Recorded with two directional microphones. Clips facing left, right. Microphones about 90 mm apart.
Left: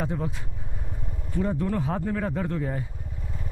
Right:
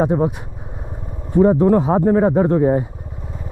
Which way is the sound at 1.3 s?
25° right (ahead or behind).